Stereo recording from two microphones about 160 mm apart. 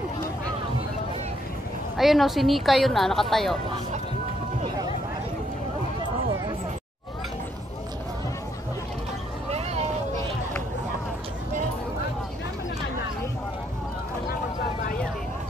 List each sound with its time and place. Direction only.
2.0 s a woman's voice: centre (ahead or behind)
9.5 s vehicle: 40° right (ahead or behind)
14.3 s vehicle: 65° left (ahead or behind)